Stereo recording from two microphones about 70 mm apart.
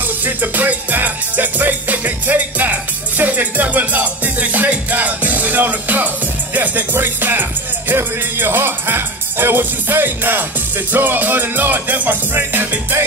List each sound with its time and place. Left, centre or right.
0.2 s music: right